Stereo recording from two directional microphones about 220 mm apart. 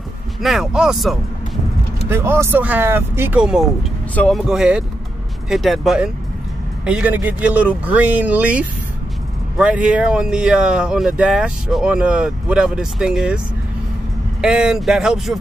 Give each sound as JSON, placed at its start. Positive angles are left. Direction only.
{"t": 0.4, "sound": "speech", "side_deg": 0}
{"t": 14.4, "sound": "speech", "side_deg": -5}